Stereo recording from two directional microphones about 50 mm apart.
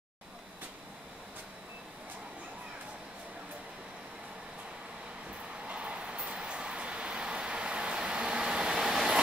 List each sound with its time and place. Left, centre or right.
5.7 s train: right